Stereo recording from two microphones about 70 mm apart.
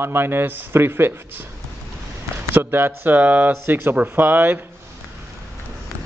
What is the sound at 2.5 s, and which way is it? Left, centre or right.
Speech, right.